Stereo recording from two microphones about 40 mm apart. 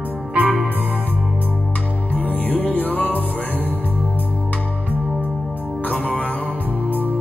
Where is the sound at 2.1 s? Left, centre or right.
Left.